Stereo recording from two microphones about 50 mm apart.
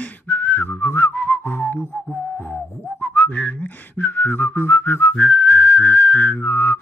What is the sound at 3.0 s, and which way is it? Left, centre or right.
Whistling, left.